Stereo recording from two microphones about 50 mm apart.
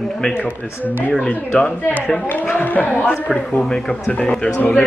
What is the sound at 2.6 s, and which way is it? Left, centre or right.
Speech, left.